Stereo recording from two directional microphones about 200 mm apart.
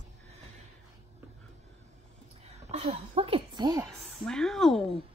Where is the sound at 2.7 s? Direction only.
30° right (ahead or behind).